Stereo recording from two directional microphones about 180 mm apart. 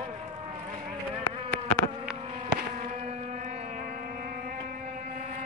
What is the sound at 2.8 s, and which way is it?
Boat, 40° right (ahead or behind).